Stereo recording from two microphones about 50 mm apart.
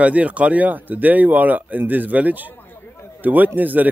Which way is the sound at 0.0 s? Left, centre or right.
Right.